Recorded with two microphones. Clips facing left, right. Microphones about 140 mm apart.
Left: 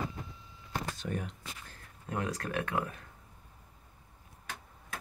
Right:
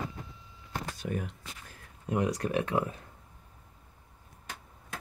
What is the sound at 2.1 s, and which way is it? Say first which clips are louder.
Speech: right 6 dB; 20° right (ahead or behind).